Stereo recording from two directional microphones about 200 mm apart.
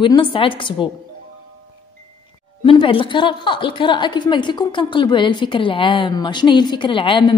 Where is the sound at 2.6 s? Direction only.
25° left (ahead or behind).